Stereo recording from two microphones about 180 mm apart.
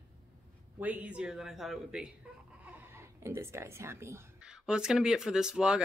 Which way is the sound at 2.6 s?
15° right (ahead or behind).